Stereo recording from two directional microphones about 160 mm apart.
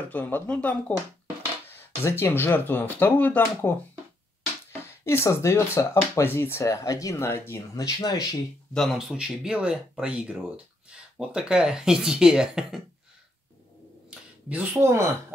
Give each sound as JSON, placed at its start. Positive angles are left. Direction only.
{"t": 0.1, "sound": "speech", "side_deg": 10}
{"t": 5.0, "sound": "speech", "side_deg": 15}
{"t": 8.7, "sound": "speech", "side_deg": 0}
{"t": 14.1, "sound": "speech", "side_deg": -10}